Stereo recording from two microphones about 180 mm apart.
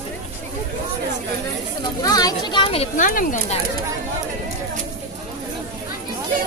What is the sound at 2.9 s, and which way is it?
Speech, 50° left (ahead or behind).